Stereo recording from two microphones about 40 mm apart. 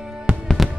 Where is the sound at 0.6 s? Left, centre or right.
Centre.